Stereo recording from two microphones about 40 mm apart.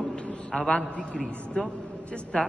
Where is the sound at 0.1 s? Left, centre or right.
Centre.